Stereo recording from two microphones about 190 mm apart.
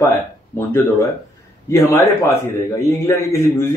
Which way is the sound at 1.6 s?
15° left (ahead or behind).